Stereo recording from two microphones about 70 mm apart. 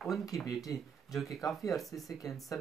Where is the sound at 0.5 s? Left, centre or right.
Left.